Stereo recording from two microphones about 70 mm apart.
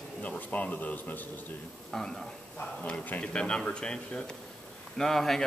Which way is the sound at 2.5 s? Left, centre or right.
Centre.